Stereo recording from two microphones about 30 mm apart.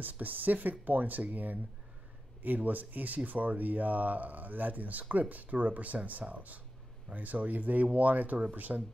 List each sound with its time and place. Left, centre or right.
0.0 s speech: right